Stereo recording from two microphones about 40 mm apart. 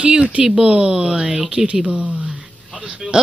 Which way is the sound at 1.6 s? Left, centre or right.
Centre.